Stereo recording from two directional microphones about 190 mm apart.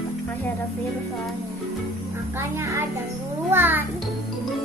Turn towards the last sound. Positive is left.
turn(degrees=-10)  # may be behind; listen again after turning